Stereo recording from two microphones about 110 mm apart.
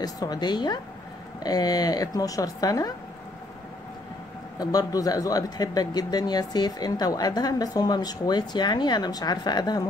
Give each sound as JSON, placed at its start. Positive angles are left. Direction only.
{"t": 0.0, "sound": "speech", "side_deg": 35}
{"t": 4.6, "sound": "speech", "side_deg": 35}